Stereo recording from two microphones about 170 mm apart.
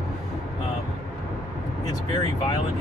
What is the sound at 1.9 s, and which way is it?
Speech, 20° left (ahead or behind).